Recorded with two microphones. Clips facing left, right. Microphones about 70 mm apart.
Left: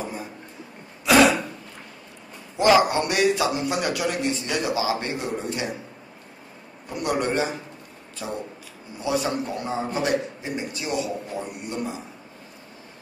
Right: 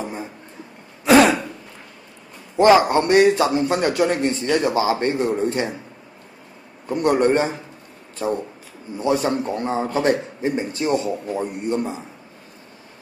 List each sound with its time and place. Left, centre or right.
0.0 s a sound: right
1.0 s throat clearing: right
2.5 s a man's voice: right
6.9 s a man's voice: right
8.9 s a man's voice: right